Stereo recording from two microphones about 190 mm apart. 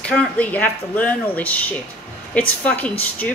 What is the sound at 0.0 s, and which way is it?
Speech, 10° left (ahead or behind).